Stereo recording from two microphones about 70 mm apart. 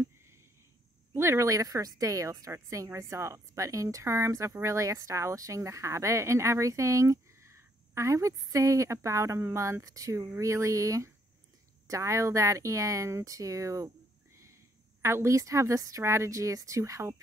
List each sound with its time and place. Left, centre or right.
1.1 s a woman's voice: right
10.1 s a woman's voice: right